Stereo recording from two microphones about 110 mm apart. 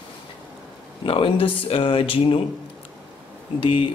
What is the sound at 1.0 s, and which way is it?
Speech, 55° left (ahead or behind).